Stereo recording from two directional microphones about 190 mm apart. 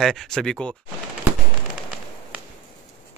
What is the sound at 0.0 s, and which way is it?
Speech, centre (ahead or behind).